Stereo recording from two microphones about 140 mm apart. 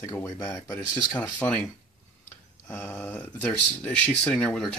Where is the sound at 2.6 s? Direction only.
15° left (ahead or behind).